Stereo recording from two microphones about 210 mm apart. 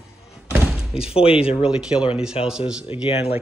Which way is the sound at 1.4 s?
25° left (ahead or behind).